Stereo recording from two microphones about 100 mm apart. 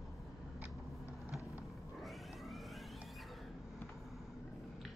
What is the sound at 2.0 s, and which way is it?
Cat, centre (ahead or behind).